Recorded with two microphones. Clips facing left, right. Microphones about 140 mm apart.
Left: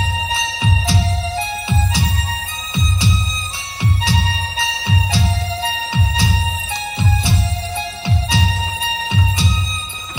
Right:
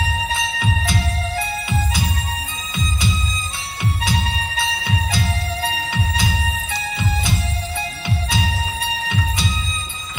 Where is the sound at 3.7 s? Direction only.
25° left (ahead or behind).